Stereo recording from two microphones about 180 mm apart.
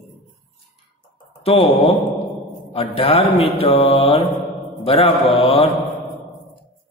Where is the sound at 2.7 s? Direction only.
35° left (ahead or behind).